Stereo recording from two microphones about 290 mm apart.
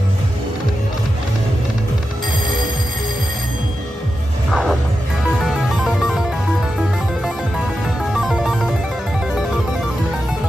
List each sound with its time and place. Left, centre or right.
4.5 s music: centre
8.1 s music: centre